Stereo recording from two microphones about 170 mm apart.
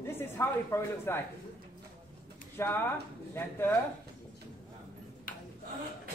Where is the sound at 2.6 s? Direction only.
15° left (ahead or behind).